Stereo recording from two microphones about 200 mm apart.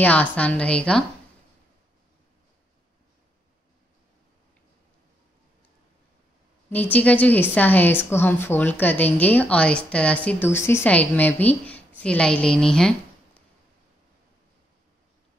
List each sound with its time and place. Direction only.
0.0 s a woman's voice: 10° left (ahead or behind)
6.7 s a woman's voice: 10° left (ahead or behind)